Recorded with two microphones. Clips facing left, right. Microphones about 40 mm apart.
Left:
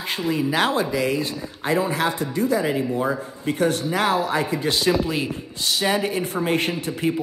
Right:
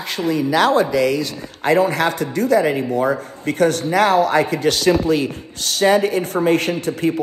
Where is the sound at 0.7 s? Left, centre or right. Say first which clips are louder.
Right 6 dB; right.